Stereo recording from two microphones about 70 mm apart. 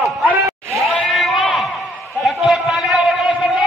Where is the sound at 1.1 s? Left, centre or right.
Centre.